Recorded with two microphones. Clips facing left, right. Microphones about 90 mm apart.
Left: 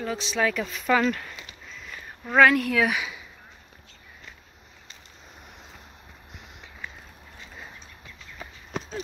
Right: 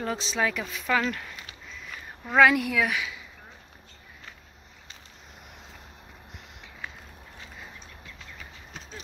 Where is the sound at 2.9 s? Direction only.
25° left (ahead or behind).